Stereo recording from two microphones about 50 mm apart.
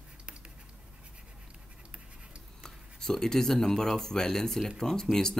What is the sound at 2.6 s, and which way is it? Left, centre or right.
Speech, centre.